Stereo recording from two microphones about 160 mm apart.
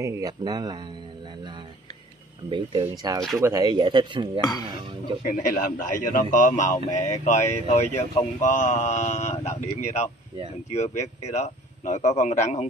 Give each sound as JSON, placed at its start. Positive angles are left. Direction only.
{"t": 0.0, "sound": "speech", "side_deg": -20}
{"t": 2.5, "sound": "speech", "side_deg": -25}
{"t": 4.4, "sound": "speech", "side_deg": 25}
{"t": 5.2, "sound": "a man's voice", "side_deg": 65}